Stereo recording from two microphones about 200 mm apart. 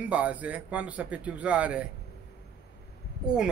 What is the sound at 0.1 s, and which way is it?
Speech, 5° right (ahead or behind).